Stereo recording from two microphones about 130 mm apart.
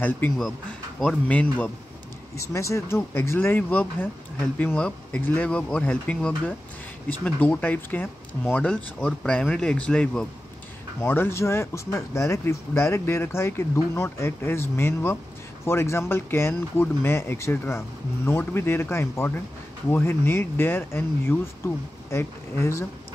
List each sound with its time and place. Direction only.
1.3 s speech: 10° left (ahead or behind)
2.3 s speech: 25° left (ahead or behind); by 10.2 s 5° left (ahead or behind)
11.0 s speech: 20° left (ahead or behind)